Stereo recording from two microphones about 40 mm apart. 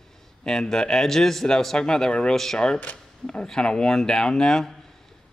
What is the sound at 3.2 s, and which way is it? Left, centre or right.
Speech, left.